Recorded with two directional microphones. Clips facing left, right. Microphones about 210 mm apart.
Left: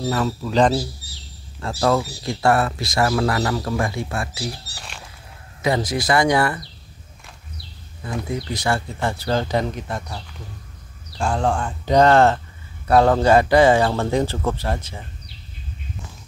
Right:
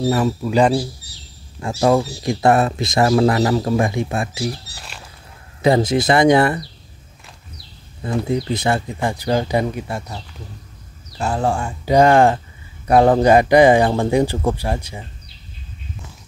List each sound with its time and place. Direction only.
0.1 s speech: 15° right (ahead or behind)
5.6 s speech: 25° right (ahead or behind)
8.0 s speech: 25° right (ahead or behind); by 10.1 s 10° right (ahead or behind)
11.1 s speech: 5° right (ahead or behind)